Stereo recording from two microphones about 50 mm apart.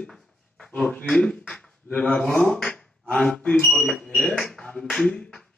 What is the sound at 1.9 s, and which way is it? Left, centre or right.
Speech, left.